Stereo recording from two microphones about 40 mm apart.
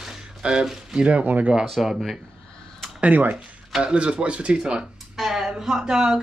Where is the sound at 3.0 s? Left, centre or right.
Right.